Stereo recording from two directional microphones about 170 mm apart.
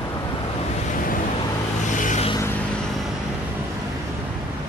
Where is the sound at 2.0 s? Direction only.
45° left (ahead or behind).